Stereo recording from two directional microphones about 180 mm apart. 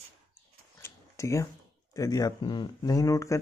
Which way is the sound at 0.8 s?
15° left (ahead or behind).